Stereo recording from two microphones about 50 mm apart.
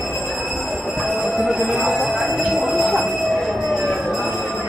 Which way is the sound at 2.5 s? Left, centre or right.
Centre.